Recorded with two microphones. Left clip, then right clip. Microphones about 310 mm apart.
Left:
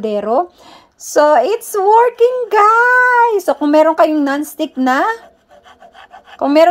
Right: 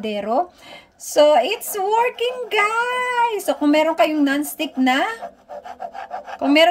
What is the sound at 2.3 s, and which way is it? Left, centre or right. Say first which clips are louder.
A woman's voice: left 8 dB; centre.